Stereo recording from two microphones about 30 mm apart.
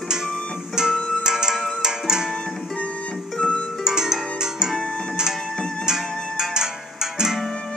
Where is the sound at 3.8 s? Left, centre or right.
Centre.